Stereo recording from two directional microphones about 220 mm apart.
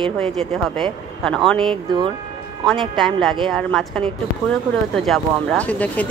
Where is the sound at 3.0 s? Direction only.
Centre (ahead or behind).